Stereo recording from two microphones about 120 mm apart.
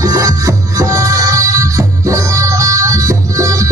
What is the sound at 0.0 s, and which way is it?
Music, 30° right (ahead or behind).